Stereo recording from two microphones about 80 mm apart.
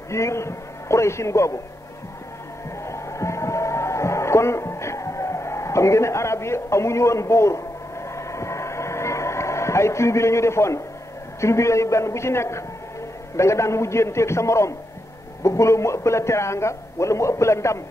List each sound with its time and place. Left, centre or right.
0.1 s a man's voice: left
2.8 s music: left
8.1 s a sound: left
11.4 s a man's voice: left